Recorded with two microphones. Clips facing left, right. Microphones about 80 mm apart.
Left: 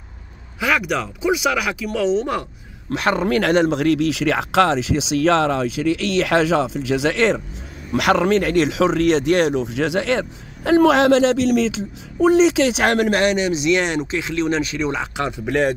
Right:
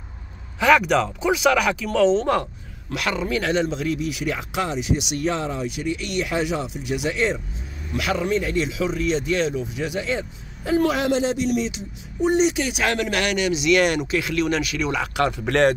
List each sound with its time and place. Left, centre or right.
0.6 s speech: centre
2.9 s speech: left
3.3 s speech: left
7.9 s speech: left
12.8 s a man's voice: left
13.2 s speech: left